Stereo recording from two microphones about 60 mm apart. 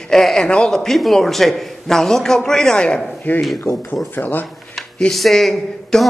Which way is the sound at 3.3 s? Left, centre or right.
Left.